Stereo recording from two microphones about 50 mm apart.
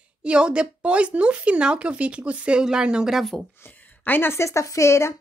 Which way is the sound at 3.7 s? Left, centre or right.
Left.